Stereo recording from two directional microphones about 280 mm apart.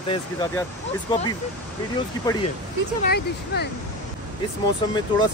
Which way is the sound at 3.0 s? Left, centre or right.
Left.